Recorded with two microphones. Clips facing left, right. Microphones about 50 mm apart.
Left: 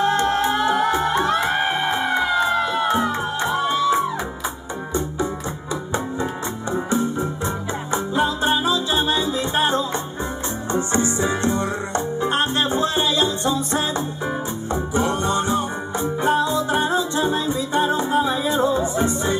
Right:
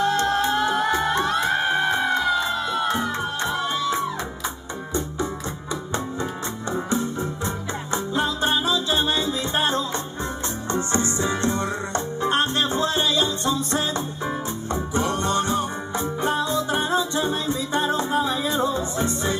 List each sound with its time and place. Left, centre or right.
0.0 s music: centre
1.8 s music: left
2.9 s music: centre
6.7 s music: centre